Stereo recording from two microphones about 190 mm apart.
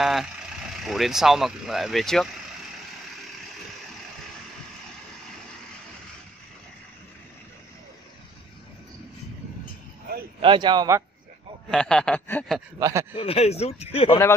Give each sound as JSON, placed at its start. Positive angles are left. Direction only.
{"t": 0.0, "sound": "speech", "side_deg": 0}
{"t": 10.4, "sound": "a man's voice", "side_deg": -25}
{"t": 11.7, "sound": "speech", "side_deg": 5}
{"t": 12.7, "sound": "a man's voice", "side_deg": -20}
{"t": 13.2, "sound": "speech", "side_deg": 30}